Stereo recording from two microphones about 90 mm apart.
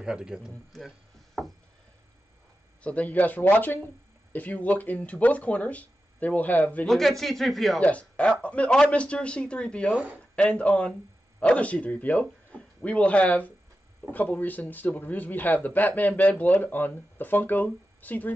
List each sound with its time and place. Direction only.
0.0 s speech: 10° right (ahead or behind)
0.8 s chop: centre (ahead or behind)
2.8 s speech: 15° left (ahead or behind)
6.9 s speech: centre (ahead or behind)
7.8 s speech: 15° left (ahead or behind)
9.9 s speech: 15° right (ahead or behind)
10.3 s a man's voice: 10° left (ahead or behind)